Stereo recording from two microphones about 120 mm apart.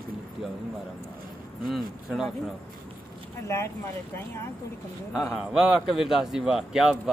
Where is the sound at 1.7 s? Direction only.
Centre (ahead or behind).